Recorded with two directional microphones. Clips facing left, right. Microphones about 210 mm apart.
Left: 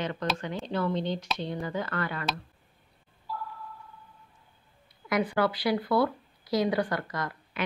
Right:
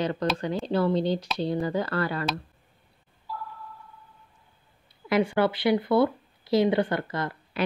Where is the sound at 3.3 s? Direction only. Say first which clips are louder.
Even; centre (ahead or behind).